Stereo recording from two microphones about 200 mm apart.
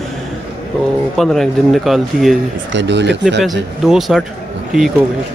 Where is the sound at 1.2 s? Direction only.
Centre (ahead or behind).